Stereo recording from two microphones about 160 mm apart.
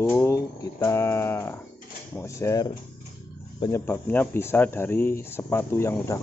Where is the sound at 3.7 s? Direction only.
15° left (ahead or behind).